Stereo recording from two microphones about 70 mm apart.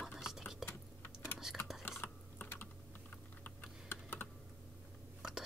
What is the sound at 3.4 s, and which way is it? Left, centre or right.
Computer keyboard, left.